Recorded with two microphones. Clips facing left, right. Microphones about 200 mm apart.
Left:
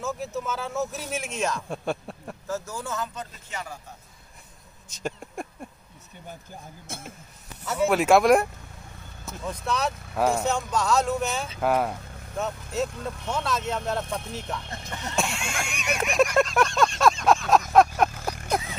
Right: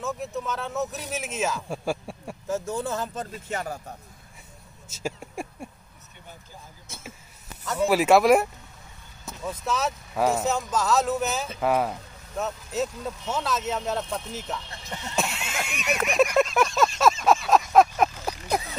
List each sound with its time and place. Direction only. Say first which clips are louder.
0.0 s speech: even; centre (ahead or behind)
2.6 s speech: right 4 dB; 30° right (ahead or behind)
3.2 s speech: right 5 dB; 50° right (ahead or behind)
5.0 s speech: even; 10° right (ahead or behind)
6.9 s speech: left 7 dB; 55° left (ahead or behind)
7.6 s speech: even; 5° left (ahead or behind)
15.1 s a sound: even; 5° right (ahead or behind)